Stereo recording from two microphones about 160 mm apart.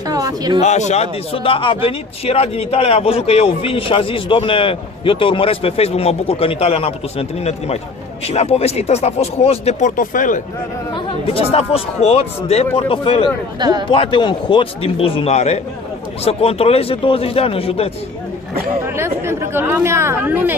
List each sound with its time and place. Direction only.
0.0 s speech: 25° right (ahead or behind)
0.6 s a man's voice: 45° left (ahead or behind)
11.0 s a man's voice: 35° left (ahead or behind)
13.6 s a man's voice: 25° right (ahead or behind)
13.8 s a man's voice: 30° left (ahead or behind)
18.9 s speech: 15° right (ahead or behind)